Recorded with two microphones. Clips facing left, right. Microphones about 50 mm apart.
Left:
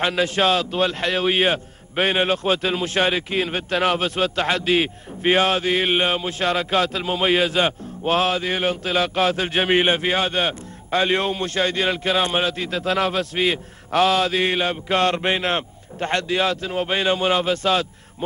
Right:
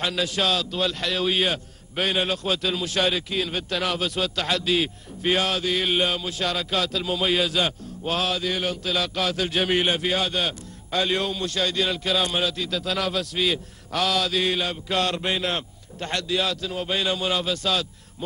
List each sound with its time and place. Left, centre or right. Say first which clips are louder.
0.0 s a man's voice: left 5 dB; left